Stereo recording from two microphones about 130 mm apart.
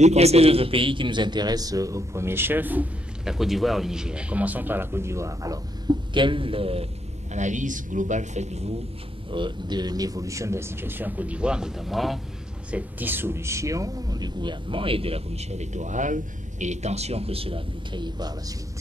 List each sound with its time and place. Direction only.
0.0 s a man's voice: 55° right (ahead or behind)
7.3 s speech: 70° right (ahead or behind)
9.3 s speech: 35° right (ahead or behind); by 12.2 s centre (ahead or behind)
12.7 s speech: 15° right (ahead or behind); by 18.3 s 35° right (ahead or behind)